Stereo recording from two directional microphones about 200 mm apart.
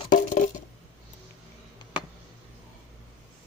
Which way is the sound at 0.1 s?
40° left (ahead or behind).